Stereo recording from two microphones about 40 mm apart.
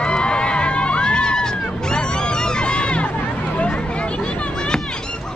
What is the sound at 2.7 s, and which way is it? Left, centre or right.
Crowd, left.